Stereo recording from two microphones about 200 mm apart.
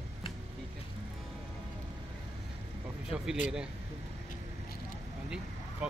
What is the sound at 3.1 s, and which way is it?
Speech, 5° right (ahead or behind).